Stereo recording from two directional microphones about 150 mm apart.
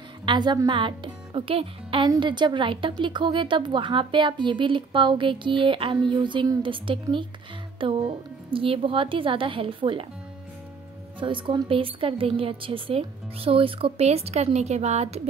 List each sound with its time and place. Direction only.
0.2 s a woman's voice: 30° right (ahead or behind)
11.1 s a woman's voice: 35° right (ahead or behind)